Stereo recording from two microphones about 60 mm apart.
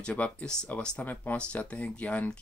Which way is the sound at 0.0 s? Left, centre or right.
Left.